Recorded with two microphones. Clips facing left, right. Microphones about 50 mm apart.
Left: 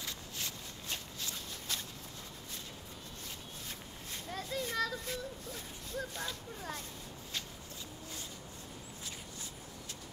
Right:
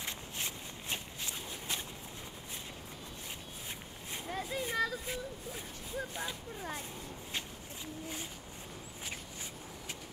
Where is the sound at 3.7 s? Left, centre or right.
Centre.